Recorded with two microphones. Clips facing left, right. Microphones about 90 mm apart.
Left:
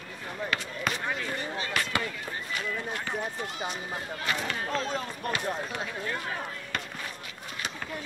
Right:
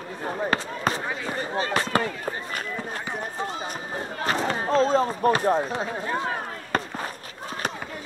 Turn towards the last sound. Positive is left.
turn(degrees=-35)  # may be behind; listen again after turning